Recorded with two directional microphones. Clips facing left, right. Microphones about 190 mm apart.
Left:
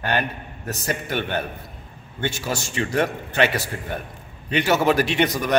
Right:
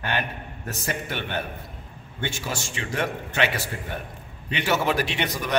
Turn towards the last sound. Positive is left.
turn(degrees=45)  # may be behind; listen again after turning